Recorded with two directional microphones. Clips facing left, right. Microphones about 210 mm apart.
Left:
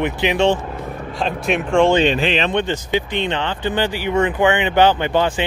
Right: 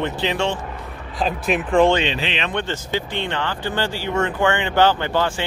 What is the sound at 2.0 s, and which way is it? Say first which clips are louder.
Speech: left 7 dB; 45° left (ahead or behind).